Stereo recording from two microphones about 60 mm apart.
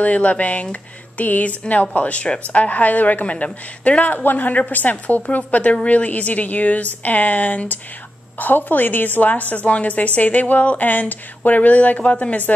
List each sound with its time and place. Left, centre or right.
0.0 s a woman's voice: left